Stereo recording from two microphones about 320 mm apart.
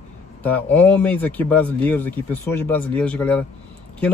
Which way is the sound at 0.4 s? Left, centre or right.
Centre.